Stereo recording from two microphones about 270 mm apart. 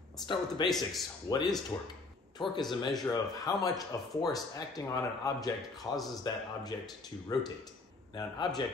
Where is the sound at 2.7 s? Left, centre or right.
Centre.